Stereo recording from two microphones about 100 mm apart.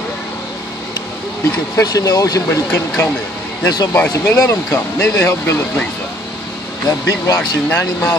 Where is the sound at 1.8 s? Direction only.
35° left (ahead or behind).